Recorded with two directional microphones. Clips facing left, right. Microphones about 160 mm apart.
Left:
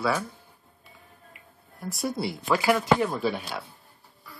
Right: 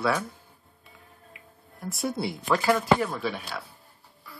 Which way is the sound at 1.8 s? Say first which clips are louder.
Even; centre (ahead or behind).